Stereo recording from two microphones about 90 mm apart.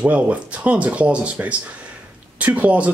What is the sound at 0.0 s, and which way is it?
Speech, 15° right (ahead or behind).